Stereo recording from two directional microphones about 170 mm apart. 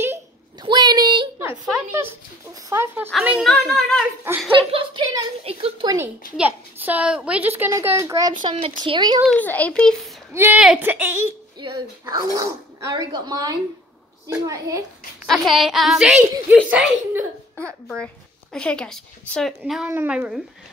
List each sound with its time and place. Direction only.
0.0 s a sound: 15° right (ahead or behind)
0.7 s a sound: 25° right (ahead or behind)
2.7 s a child's voice: 15° right (ahead or behind)
3.1 s a child's voice: 5° right (ahead or behind)
4.6 s a woman's voice: 30° right (ahead or behind)
6.3 s a child's voice: 10° right (ahead or behind); by 9.2 s 25° right (ahead or behind)
9.3 s a child's voice: 10° left (ahead or behind)
10.3 s a child's voice: 10° right (ahead or behind)
11.6 s speech: 25° right (ahead or behind)
15.2 s a child's voice: centre (ahead or behind)
17.6 s a child's voice: 5° left (ahead or behind)
19.6 s a child's voice: 5° right (ahead or behind)